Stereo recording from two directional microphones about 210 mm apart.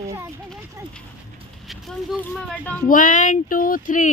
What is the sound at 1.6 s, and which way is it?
Speech, centre (ahead or behind).